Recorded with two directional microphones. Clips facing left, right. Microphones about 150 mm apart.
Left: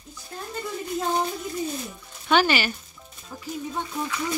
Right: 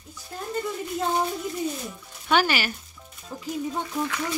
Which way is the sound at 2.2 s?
5° right (ahead or behind).